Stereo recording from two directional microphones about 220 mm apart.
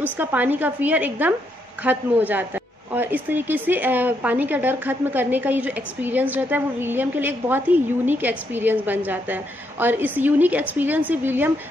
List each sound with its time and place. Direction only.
0.0 s speech: 10° right (ahead or behind)